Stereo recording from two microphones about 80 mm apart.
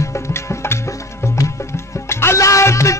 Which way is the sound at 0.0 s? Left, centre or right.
Left.